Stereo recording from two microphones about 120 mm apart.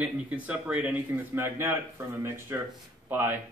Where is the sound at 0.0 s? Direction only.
10° right (ahead or behind).